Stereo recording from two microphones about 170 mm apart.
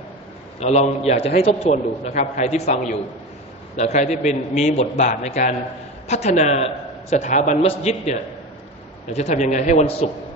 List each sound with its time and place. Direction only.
0.6 s a man's voice: 40° left (ahead or behind)